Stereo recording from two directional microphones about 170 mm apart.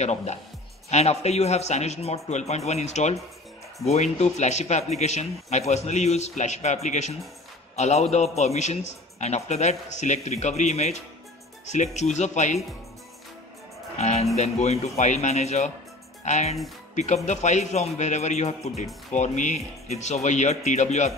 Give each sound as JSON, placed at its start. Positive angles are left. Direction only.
{"t": 0.0, "sound": "a man's voice", "side_deg": 40}
{"t": 13.9, "sound": "speech", "side_deg": 40}